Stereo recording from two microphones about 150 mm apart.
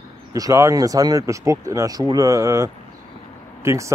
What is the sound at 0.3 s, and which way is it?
Speech, 20° right (ahead or behind).